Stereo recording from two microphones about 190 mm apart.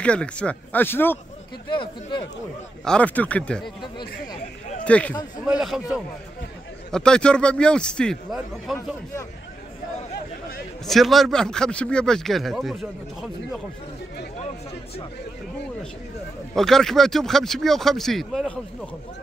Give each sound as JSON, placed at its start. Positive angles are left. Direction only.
{"t": 0.0, "sound": "speech", "side_deg": 5}
{"t": 1.7, "sound": "speech", "side_deg": 25}
{"t": 2.8, "sound": "speech", "side_deg": 5}
{"t": 4.8, "sound": "speech", "side_deg": 5}
{"t": 10.9, "sound": "speech", "side_deg": 0}
{"t": 16.5, "sound": "speech", "side_deg": 0}